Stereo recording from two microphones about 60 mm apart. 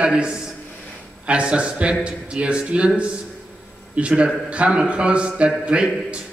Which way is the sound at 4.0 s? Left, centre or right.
Centre.